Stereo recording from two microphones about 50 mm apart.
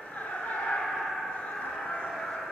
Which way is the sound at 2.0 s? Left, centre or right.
Centre.